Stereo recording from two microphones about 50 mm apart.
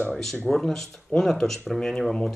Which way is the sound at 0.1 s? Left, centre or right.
Centre.